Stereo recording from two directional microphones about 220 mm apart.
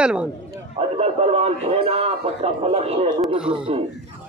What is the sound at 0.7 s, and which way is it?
A man's voice, 30° right (ahead or behind).